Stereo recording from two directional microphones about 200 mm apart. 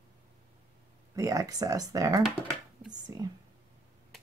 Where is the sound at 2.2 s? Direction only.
5° right (ahead or behind).